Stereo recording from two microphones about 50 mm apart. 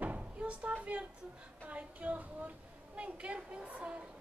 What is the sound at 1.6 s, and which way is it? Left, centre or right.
A woman's voice, right.